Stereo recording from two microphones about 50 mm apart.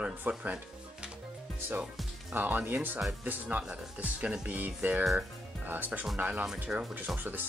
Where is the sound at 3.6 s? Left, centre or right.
Centre; by 6.4 s right.